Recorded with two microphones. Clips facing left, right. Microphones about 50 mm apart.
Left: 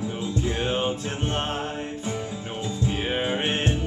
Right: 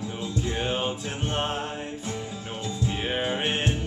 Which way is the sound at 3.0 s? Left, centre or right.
Centre.